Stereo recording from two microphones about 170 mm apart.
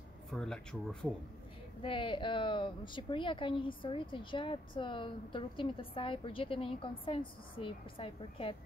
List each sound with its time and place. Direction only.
0.3 s speech: 5° left (ahead or behind)
1.8 s speech: 30° left (ahead or behind)